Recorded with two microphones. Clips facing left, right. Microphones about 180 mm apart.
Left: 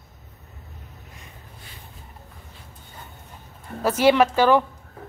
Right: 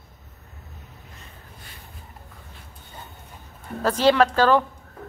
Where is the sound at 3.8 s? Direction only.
10° left (ahead or behind).